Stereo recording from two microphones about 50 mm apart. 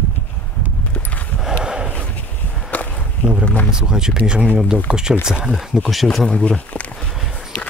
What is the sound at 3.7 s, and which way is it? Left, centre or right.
Speech, centre.